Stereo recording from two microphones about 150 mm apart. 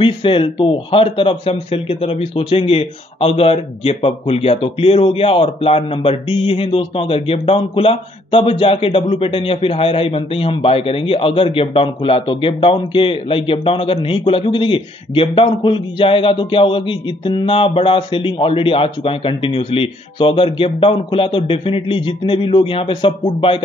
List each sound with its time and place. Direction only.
0.0 s speech: 35° left (ahead or behind)